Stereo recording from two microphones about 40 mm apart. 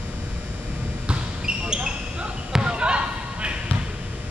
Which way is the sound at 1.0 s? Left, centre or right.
Right.